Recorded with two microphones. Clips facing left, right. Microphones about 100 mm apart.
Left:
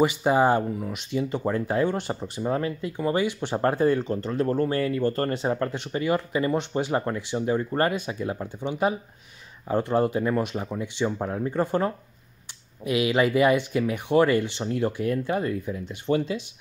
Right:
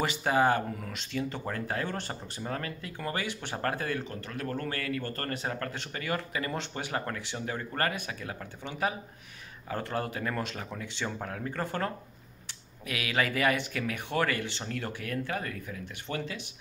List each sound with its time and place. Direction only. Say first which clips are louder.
0.0 s speech: left 6 dB; 15° left (ahead or behind)